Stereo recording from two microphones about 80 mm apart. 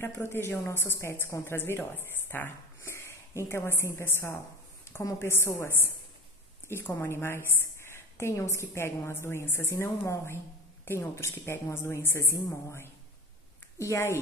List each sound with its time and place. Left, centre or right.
0.0 s a woman's voice: left
4.9 s a sound: left
5.2 s a woman's voice: left
12.4 s a woman's voice: left